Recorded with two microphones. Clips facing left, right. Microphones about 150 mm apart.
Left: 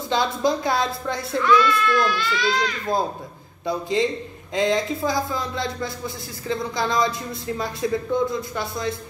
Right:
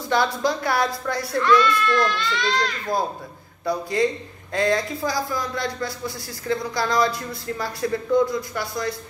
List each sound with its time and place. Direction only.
0.1 s speech: 20° left (ahead or behind)
1.4 s a child's voice: centre (ahead or behind)
3.6 s speech: 20° left (ahead or behind)